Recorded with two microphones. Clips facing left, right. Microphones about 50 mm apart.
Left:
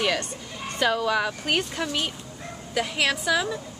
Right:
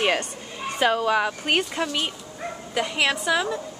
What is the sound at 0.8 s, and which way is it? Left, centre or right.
A woman's voice, centre.